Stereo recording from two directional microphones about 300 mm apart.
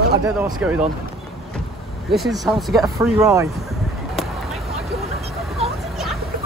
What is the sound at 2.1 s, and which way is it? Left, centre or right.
Speech, centre.